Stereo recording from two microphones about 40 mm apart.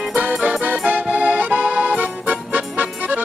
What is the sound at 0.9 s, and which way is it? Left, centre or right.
Accordion, right.